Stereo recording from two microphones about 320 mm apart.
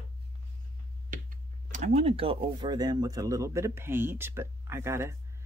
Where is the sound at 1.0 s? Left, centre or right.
Right.